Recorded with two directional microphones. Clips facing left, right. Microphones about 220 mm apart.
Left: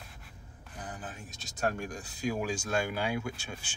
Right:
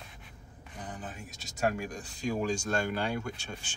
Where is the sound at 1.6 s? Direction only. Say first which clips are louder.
Right 2 dB; centre (ahead or behind).